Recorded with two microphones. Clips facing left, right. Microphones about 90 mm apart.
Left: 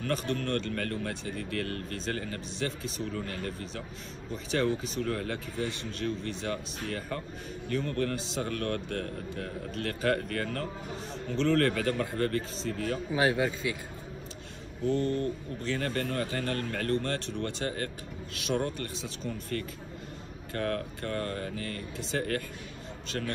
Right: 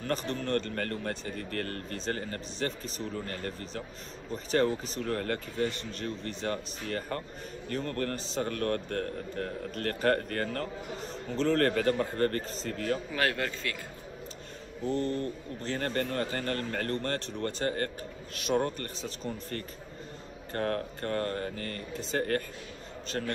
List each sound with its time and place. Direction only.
0.0 s a man's voice: 35° right (ahead or behind)
13.1 s speech: 15° left (ahead or behind)
14.9 s a man's voice: 35° right (ahead or behind)